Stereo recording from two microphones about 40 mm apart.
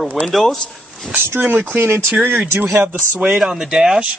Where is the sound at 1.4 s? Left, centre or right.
Right.